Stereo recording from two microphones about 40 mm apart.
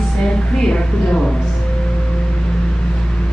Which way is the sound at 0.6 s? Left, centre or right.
Left.